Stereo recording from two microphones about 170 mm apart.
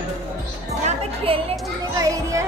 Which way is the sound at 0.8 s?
35° right (ahead or behind).